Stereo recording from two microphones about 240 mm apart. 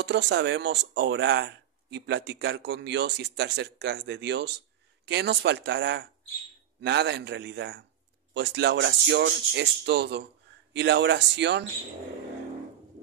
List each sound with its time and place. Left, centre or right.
0.0 s speech: right